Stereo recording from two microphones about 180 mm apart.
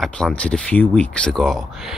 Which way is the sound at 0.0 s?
5° left (ahead or behind).